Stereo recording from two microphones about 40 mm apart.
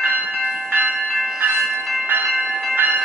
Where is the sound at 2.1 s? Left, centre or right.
Right.